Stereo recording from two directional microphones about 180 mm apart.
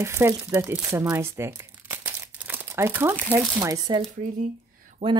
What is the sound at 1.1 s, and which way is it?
Crumpling, 15° right (ahead or behind).